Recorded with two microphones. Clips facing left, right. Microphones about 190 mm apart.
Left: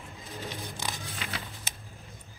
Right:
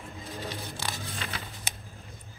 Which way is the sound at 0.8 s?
15° left (ahead or behind).